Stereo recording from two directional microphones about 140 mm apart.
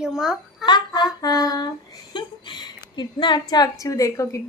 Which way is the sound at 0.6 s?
30° left (ahead or behind).